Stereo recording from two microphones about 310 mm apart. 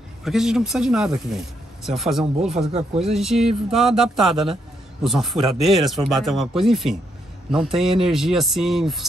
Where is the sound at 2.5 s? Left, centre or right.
Centre.